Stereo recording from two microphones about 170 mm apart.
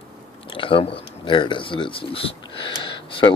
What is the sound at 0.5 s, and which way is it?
Speech, 30° left (ahead or behind).